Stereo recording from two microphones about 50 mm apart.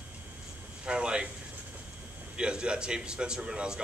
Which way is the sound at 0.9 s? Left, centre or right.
Centre.